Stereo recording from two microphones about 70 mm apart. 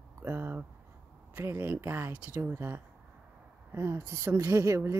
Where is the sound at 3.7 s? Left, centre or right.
Right.